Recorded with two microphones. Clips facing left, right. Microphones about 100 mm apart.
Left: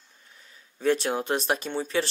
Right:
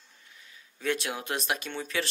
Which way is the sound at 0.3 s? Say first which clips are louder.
Left 1 dB; 40° left (ahead or behind).